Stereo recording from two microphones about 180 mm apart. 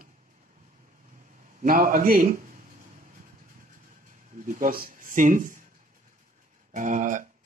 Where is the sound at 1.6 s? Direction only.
50° right (ahead or behind).